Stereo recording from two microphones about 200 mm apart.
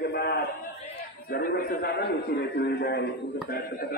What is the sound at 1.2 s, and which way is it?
A man's voice, 55° left (ahead or behind).